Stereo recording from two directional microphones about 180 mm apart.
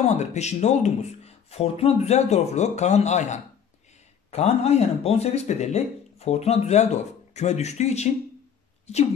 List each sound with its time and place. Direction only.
0.1 s speech: 40° left (ahead or behind)